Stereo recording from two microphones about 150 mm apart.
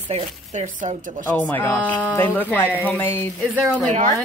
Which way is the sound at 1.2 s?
10° left (ahead or behind).